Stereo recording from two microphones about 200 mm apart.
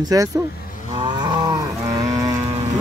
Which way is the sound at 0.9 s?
20° right (ahead or behind).